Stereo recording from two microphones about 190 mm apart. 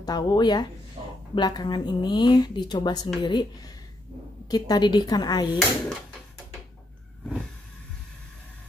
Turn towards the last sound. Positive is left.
turn(degrees=0)  # may be behind; listen again after turning